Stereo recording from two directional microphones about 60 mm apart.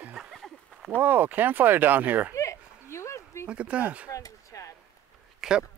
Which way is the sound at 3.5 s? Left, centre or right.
Centre.